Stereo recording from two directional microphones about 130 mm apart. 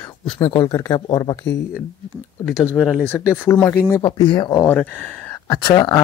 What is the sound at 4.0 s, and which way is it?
Speech, 40° left (ahead or behind).